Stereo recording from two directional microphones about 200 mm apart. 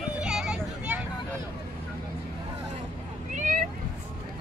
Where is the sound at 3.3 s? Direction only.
40° right (ahead or behind).